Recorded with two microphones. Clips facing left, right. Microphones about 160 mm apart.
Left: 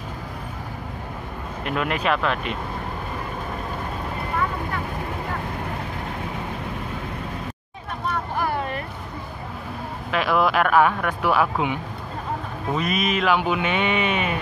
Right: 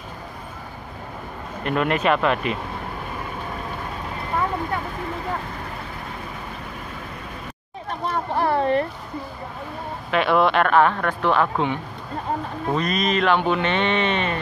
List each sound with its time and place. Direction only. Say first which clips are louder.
1.6 s speech: right 3 dB; centre (ahead or behind)
8.4 s a sound: right 9 dB; 30° right (ahead or behind)
10.1 s speech: right 2 dB; centre (ahead or behind)